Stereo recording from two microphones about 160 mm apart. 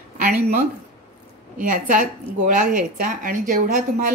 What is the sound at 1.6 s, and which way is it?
A woman's voice, 60° right (ahead or behind).